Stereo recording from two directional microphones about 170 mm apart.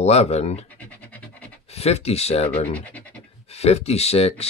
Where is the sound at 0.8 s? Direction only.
10° left (ahead or behind).